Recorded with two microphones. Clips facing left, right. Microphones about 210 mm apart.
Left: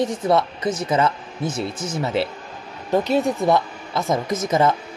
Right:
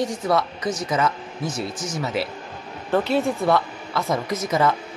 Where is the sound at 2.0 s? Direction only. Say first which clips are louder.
Left 3 dB; 25° left (ahead or behind).